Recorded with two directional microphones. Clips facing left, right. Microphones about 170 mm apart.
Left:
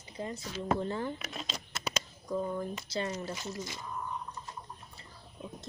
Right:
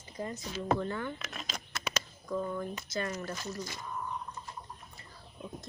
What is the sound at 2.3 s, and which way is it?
Speech, 25° left (ahead or behind).